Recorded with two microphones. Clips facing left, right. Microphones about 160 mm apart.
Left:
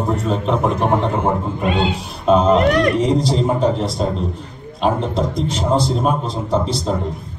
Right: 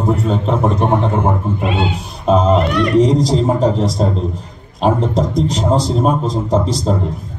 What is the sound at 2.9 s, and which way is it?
Speech, 40° right (ahead or behind).